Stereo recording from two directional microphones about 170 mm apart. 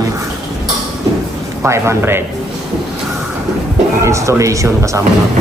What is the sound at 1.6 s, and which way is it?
Speech, 15° right (ahead or behind).